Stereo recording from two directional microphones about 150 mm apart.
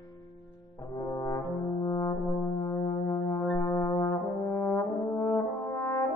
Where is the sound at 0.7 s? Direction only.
20° left (ahead or behind).